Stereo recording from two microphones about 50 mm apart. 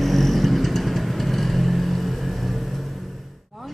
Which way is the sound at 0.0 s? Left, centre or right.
Centre.